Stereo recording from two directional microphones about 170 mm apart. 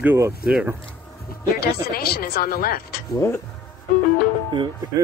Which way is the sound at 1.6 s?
65° left (ahead or behind).